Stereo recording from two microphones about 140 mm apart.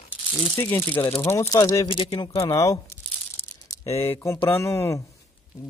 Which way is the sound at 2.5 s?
25° left (ahead or behind).